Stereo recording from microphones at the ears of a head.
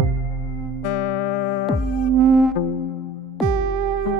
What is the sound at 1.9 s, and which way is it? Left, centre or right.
Music, right.